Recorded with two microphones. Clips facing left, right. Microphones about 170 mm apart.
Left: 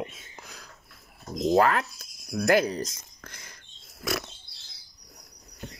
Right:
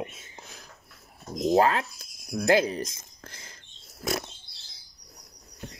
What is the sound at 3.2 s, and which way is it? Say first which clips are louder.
Rodents: even; 25° right (ahead or behind).